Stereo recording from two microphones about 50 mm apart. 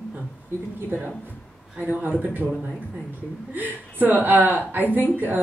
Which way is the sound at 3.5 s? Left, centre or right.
Right.